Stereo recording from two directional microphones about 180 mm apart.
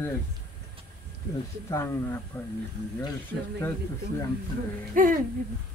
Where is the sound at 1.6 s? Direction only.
15° left (ahead or behind).